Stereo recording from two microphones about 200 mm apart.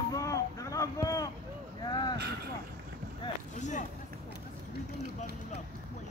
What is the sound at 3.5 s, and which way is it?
Speech, 35° left (ahead or behind).